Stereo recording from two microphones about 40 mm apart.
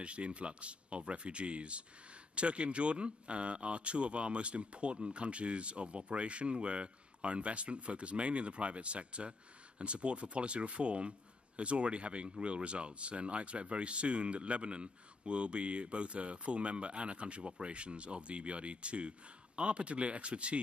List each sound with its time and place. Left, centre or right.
0.0 s a man's voice: right